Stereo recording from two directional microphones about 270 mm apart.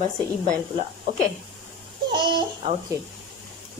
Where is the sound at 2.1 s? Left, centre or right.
Centre.